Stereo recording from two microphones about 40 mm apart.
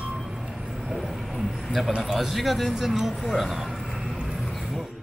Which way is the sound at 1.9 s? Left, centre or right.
Centre.